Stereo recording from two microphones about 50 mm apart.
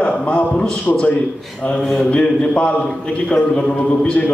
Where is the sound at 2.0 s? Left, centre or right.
Left.